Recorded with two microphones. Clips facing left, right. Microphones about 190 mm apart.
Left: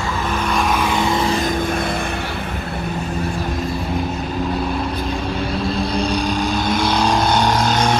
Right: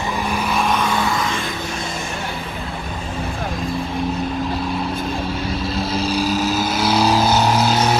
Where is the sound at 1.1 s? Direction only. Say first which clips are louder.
Left 4 dB; 30° left (ahead or behind).